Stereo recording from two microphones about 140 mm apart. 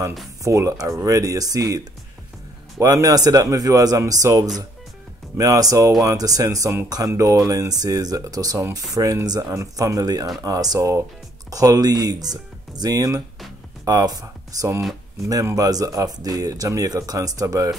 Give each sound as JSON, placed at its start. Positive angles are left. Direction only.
{"t": 0.4, "sound": "speech", "side_deg": -20}
{"t": 2.8, "sound": "speech", "side_deg": -25}